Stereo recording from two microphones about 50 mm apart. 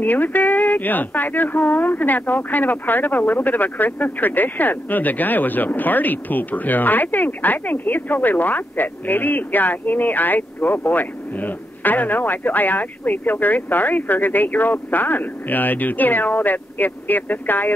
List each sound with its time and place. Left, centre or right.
0.0 s speech: left